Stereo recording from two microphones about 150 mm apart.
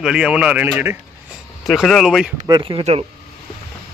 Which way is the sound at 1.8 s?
Centre (ahead or behind).